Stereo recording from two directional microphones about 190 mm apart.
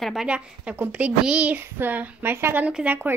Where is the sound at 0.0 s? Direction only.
Centre (ahead or behind).